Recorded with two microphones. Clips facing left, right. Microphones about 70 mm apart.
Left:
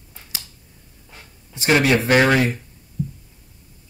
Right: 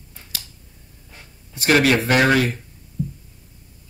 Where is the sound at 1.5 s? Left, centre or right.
Left.